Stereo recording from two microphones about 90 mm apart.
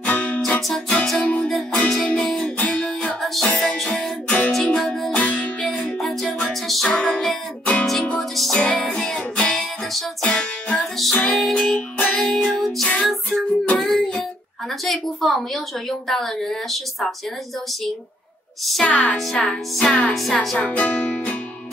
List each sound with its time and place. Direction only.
0.0 s music: 15° left (ahead or behind)
0.6 s music: centre (ahead or behind)
0.9 s music: 15° left (ahead or behind)
5.2 s music: 15° left (ahead or behind)
11.1 s music: 15° left (ahead or behind)
12.8 s music: 10° left (ahead or behind)
14.9 s a woman's voice: centre (ahead or behind)
18.9 s music: 15° left (ahead or behind)
19.1 s a woman's voice: 5° left (ahead or behind)
20.5 s music: 15° left (ahead or behind)